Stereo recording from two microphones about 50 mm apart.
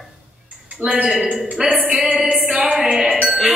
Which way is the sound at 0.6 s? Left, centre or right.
Right.